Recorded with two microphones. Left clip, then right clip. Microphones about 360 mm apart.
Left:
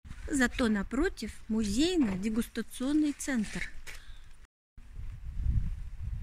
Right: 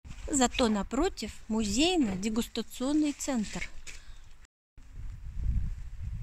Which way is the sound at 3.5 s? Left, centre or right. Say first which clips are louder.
Even; centre.